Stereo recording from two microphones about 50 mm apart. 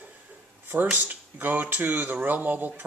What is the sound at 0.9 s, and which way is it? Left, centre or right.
Speech, right.